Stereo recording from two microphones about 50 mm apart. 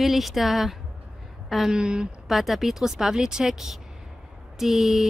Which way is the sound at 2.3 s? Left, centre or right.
Centre.